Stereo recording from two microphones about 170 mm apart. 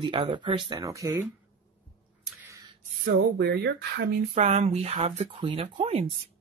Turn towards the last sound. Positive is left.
turn(degrees=-40)  # may be behind; listen again after turning